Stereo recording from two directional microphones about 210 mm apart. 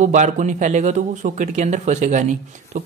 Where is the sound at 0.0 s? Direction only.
35° right (ahead or behind).